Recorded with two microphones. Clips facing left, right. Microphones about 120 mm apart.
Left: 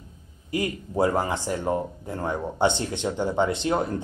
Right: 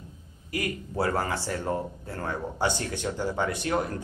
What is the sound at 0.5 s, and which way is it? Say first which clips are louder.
Speech: left 4 dB; 25° left (ahead or behind).